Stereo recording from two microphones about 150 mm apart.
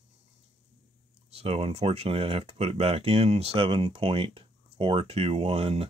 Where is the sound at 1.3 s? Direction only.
40° right (ahead or behind).